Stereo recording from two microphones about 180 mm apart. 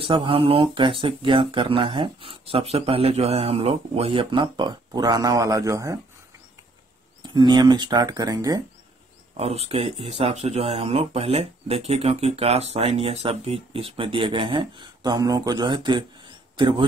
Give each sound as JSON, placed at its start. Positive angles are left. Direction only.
{"t": 0.0, "sound": "speech", "side_deg": -30}
{"t": 7.2, "sound": "speech", "side_deg": -25}
{"t": 9.4, "sound": "speech", "side_deg": -35}